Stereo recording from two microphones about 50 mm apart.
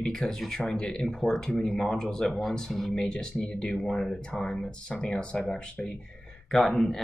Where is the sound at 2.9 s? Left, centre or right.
Centre.